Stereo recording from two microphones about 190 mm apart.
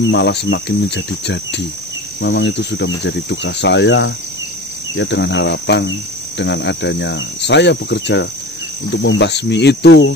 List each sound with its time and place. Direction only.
0.1 s cricket: 65° left (ahead or behind)